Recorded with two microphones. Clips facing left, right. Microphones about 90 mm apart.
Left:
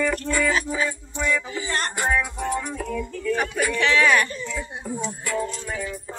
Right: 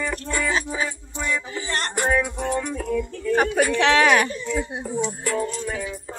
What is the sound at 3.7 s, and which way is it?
Speech, 90° right.